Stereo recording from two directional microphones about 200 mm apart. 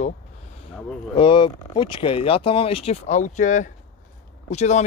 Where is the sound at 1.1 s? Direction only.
25° left (ahead or behind).